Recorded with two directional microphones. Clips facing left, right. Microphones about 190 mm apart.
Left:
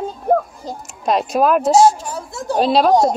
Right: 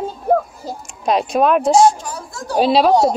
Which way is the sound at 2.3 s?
20° left (ahead or behind).